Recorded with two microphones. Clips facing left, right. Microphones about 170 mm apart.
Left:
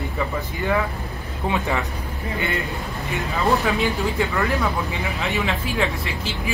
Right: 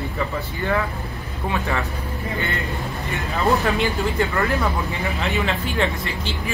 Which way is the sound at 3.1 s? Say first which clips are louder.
Even; centre (ahead or behind).